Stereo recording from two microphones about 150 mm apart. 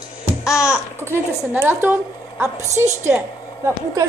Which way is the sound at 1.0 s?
15° right (ahead or behind).